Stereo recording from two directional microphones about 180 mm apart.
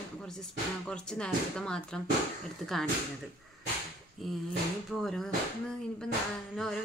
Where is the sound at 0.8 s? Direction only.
5° left (ahead or behind).